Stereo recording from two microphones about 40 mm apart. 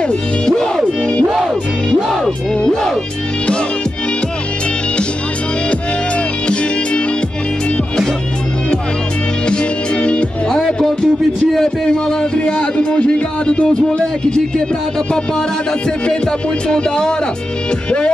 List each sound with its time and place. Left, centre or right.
0.5 s music: centre
1.9 s music: centre
6.4 s music: left
9.5 s music: left
10.5 s music: centre
11.5 s speech: centre
16.1 s music: centre
17.8 s speech: left